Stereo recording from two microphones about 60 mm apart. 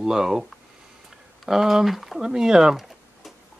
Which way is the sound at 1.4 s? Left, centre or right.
Centre.